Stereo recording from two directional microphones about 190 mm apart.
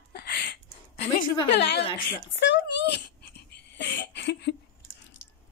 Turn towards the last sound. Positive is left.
turn(degrees=75)  # may be behind; listen again after turning